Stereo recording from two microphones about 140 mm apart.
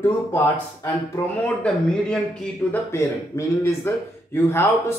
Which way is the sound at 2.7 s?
20° left (ahead or behind).